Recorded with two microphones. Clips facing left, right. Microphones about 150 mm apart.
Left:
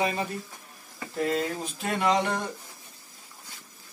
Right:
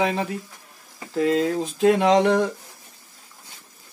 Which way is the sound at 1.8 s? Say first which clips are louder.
Right 9 dB; 85° right.